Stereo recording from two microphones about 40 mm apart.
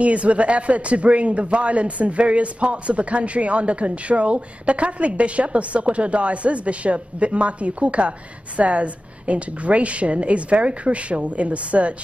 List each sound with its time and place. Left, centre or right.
0.0 s a man's voice: right